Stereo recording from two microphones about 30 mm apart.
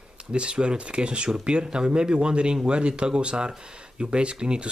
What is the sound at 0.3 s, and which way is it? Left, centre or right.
Speech, right.